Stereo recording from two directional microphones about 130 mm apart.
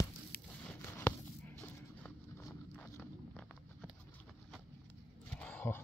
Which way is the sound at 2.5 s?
10° left (ahead or behind).